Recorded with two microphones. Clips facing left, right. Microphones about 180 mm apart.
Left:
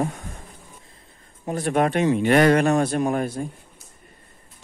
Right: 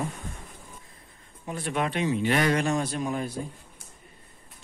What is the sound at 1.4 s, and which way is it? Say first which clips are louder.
Speech: left 8 dB; 45° left (ahead or behind).